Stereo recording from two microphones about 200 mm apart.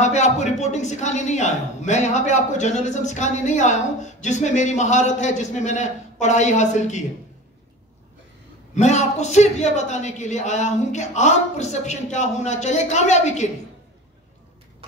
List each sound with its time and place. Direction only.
0.0 s a woman's voice: 35° left (ahead or behind)
8.7 s a woman's voice: 35° left (ahead or behind)